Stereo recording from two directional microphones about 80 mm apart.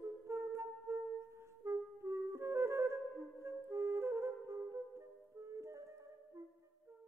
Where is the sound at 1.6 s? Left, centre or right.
Right.